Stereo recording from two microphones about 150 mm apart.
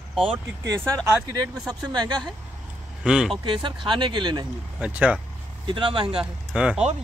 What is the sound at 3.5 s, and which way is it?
Speech, 35° right (ahead or behind).